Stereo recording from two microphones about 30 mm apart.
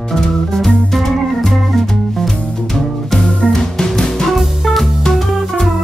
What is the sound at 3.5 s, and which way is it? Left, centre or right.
Music, centre.